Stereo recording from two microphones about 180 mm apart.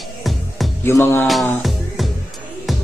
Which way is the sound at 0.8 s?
15° left (ahead or behind).